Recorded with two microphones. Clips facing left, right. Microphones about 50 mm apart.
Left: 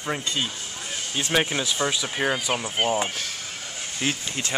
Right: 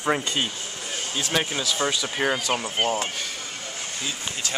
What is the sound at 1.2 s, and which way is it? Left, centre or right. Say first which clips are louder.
Speech: left 3 dB; left.